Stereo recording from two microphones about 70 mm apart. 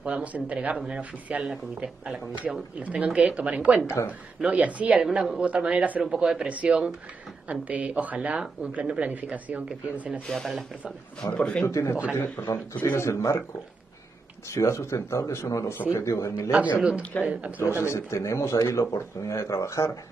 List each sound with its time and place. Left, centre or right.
0.0 s a man's voice: right
3.8 s a man's voice: left
4.4 s a man's voice: centre
5.0 s speech: centre
5.4 s a man's voice: centre
11.3 s speech: centre
11.6 s a man's voice: left
14.5 s speech: left
17.2 s a man's voice: centre
17.8 s speech: left